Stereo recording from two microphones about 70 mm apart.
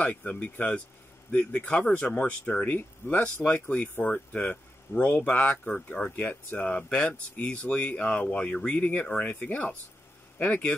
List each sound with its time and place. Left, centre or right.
0.0 s speech: left